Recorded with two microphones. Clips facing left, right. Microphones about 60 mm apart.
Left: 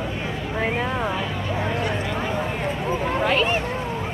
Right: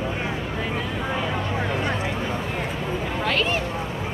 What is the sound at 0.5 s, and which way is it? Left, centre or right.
Vehicle, left.